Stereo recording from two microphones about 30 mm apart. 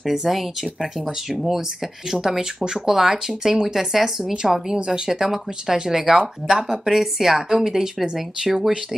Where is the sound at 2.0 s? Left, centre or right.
Centre.